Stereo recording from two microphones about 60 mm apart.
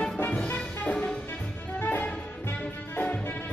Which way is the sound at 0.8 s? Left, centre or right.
Left.